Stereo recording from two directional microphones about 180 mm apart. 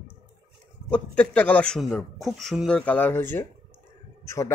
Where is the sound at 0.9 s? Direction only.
5° left (ahead or behind).